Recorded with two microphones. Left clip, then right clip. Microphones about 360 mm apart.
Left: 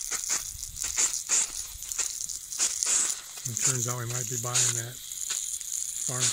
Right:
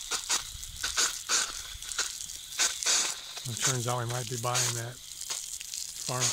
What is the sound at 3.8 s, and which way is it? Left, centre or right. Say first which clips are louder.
Speech: right 1 dB; centre.